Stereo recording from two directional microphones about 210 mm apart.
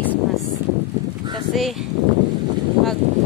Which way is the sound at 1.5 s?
Centre (ahead or behind).